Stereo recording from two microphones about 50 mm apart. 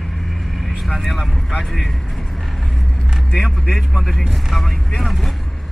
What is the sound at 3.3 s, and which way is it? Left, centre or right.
Speech, centre.